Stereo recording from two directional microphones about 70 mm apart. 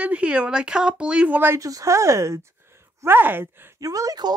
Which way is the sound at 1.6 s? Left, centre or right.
Right.